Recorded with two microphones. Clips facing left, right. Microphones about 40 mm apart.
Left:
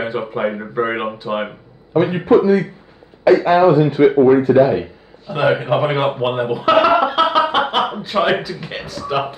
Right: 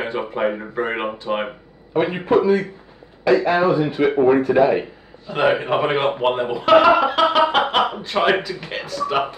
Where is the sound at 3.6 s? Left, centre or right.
Left.